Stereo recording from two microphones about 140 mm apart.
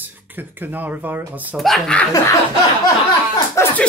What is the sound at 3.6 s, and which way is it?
Speech, 20° left (ahead or behind).